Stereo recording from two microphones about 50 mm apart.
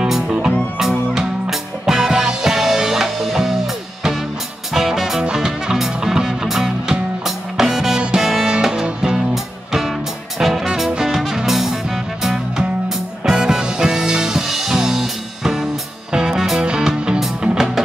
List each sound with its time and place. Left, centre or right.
0.0 s music: centre
4.7 s music: centre